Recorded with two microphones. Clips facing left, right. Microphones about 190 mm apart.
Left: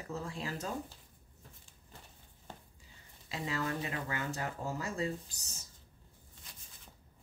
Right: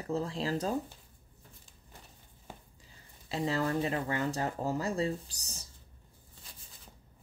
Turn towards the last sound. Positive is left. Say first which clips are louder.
# right 4 dB
turn(degrees=-35)  # may be behind; listen again after turning